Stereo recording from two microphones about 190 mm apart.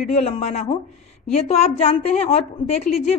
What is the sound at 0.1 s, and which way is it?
A woman's voice, 35° left (ahead or behind).